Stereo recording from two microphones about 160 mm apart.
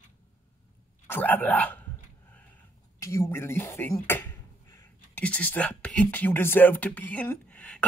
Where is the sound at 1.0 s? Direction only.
10° left (ahead or behind).